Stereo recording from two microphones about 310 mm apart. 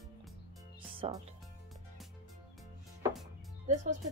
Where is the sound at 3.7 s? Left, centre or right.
Right.